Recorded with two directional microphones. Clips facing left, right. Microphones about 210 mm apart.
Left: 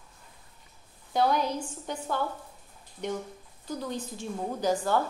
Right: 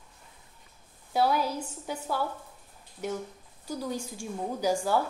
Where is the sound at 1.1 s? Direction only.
5° right (ahead or behind).